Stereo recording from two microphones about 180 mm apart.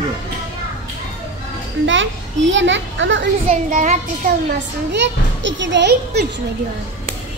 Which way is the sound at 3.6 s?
45° right (ahead or behind).